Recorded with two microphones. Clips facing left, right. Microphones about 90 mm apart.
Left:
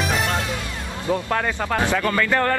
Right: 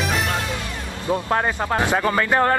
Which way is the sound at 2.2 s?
30° right (ahead or behind).